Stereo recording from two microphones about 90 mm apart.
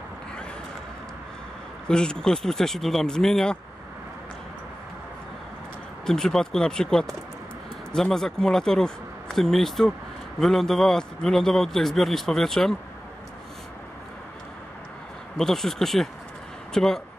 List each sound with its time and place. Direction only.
1.9 s a man's voice: 10° left (ahead or behind)
6.0 s a man's voice: 5° left (ahead or behind)
15.3 s a man's voice: 5° left (ahead or behind)